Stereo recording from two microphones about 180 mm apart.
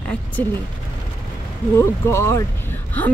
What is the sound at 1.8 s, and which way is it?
Speech, 15° left (ahead or behind).